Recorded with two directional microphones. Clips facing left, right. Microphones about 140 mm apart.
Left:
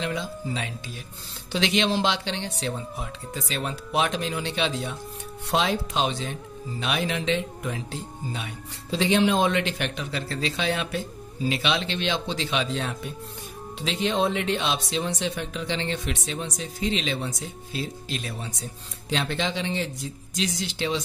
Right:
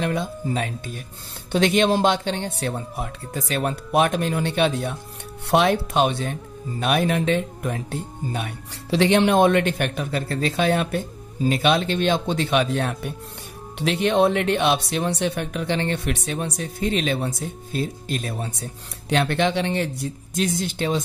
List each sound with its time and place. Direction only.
0.0 s a man's voice: 55° right (ahead or behind)
8.9 s a man's voice: 65° right (ahead or behind); by 21.0 s 50° right (ahead or behind)